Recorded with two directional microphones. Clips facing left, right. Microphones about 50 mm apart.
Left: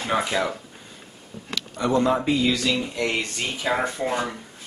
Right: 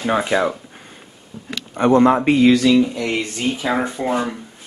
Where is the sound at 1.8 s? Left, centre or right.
Right.